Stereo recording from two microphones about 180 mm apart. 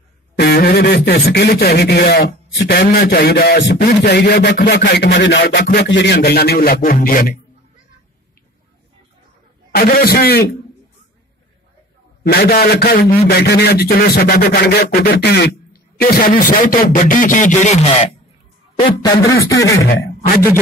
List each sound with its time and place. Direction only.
0.4 s speech: 60° left (ahead or behind)
9.7 s speech: 55° left (ahead or behind)
12.2 s speech: 60° left (ahead or behind); by 17.7 s 40° left (ahead or behind)
18.8 s a man's voice: 25° left (ahead or behind)